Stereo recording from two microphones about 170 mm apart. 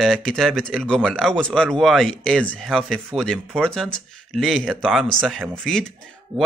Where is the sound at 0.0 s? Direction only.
5° left (ahead or behind).